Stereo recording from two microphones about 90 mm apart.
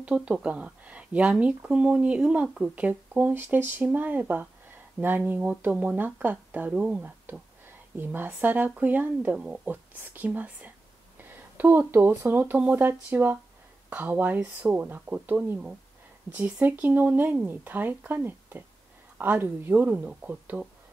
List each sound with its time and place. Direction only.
0.0 s speech: 15° right (ahead or behind)